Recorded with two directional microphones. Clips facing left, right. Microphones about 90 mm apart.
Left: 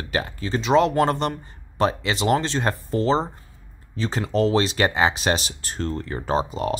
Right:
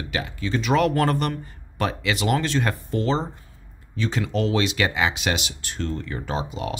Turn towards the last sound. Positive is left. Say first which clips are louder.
# left 5 dB
turn(degrees=40)  # may be behind; listen again after turning